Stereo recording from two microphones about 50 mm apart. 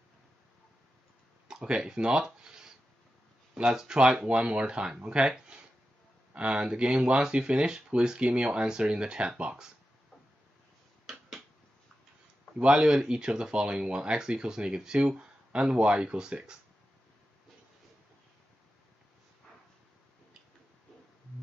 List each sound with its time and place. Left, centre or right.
1.5 s speech: centre
3.7 s speech: centre
5.5 s a sound: centre
6.3 s speech: right
12.5 s speech: centre